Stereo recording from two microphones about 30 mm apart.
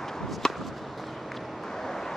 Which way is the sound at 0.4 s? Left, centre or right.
Centre.